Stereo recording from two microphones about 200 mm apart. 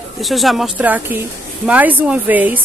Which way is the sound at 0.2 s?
Centre (ahead or behind).